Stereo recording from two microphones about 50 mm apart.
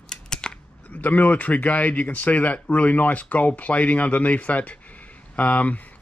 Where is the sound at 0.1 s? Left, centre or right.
Centre.